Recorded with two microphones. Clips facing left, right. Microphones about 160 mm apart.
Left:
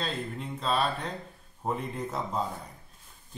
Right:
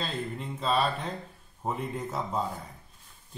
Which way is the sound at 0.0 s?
Centre (ahead or behind).